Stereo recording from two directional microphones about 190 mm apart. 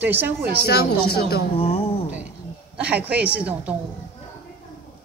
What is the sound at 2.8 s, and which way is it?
Speech, 5° right (ahead or behind).